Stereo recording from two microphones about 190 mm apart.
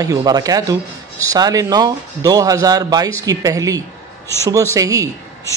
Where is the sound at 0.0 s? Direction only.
20° right (ahead or behind).